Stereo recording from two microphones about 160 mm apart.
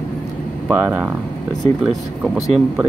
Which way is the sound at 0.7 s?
10° right (ahead or behind).